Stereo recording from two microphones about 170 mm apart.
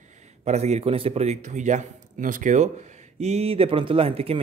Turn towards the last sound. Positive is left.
turn(degrees=-35)  # may be behind; listen again after turning